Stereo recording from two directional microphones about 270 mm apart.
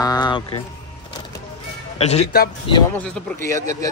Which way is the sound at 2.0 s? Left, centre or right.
Left.